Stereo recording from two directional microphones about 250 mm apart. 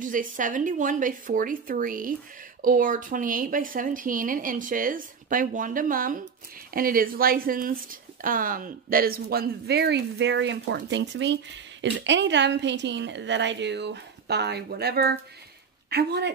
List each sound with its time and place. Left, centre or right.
0.0 s a woman's voice: right